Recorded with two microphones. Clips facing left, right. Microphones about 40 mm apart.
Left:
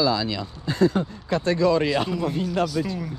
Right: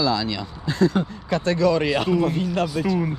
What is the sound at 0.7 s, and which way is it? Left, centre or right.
Speech, right.